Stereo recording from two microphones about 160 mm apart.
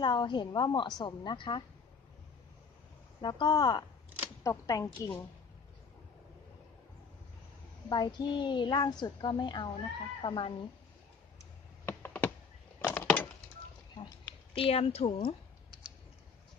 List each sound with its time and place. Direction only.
0.0 s a woman's voice: 30° left (ahead or behind)
3.2 s a woman's voice: 30° left (ahead or behind)
7.9 s a woman's voice: 25° left (ahead or behind)
11.8 s a sound: 15° left (ahead or behind)
12.9 s wood: 10° left (ahead or behind)
14.0 s speech: 35° left (ahead or behind)